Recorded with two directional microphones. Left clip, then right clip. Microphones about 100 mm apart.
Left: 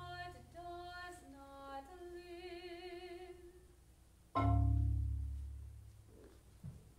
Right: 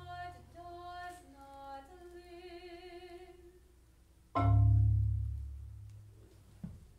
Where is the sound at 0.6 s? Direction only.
10° left (ahead or behind).